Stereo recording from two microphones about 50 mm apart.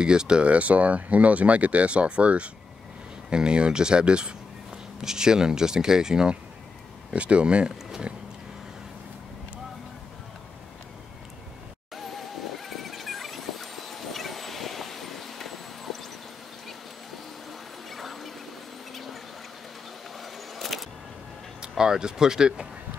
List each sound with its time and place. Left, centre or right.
0.0 s speech: centre
7.1 s speech: right
11.9 s music: centre
17.5 s a sound: centre
20.2 s a sound: centre
21.5 s speech: centre